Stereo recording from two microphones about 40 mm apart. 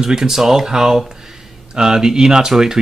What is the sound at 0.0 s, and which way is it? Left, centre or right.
Speech, centre.